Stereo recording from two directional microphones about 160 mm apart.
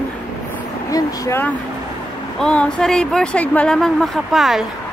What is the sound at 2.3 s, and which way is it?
Speech, 5° left (ahead or behind).